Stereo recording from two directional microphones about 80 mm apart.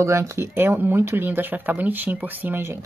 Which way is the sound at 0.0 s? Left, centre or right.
Right.